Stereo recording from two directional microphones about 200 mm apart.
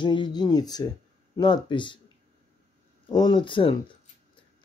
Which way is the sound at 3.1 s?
20° left (ahead or behind).